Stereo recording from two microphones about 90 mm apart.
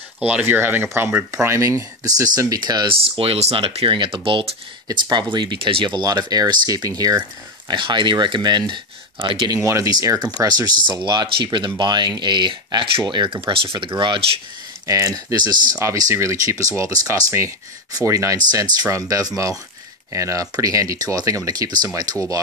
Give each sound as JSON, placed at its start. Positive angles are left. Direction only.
{"t": 0.3, "sound": "speech", "side_deg": -20}
{"t": 2.9, "sound": "speech", "side_deg": -90}
{"t": 5.1, "sound": "speech", "side_deg": -55}
{"t": 9.5, "sound": "speech", "side_deg": -35}
{"t": 10.9, "sound": "speech", "side_deg": -60}
{"t": 14.9, "sound": "speech", "side_deg": -40}